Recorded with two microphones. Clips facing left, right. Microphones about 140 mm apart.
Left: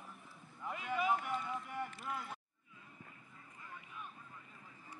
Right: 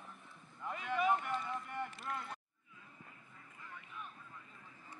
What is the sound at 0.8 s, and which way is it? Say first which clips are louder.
Run: right 2 dB; 5° left (ahead or behind).